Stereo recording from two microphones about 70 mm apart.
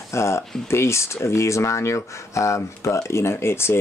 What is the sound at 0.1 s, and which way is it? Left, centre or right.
Speech, left.